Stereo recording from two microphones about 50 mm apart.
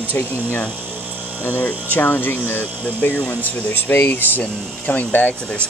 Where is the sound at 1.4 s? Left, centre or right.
Left.